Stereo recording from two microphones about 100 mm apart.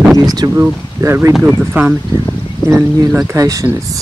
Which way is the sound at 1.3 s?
10° right (ahead or behind).